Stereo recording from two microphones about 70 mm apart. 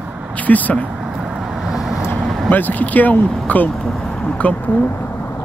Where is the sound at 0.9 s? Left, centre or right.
Centre.